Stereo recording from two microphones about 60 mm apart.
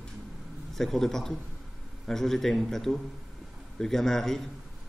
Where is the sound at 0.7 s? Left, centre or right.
Centre.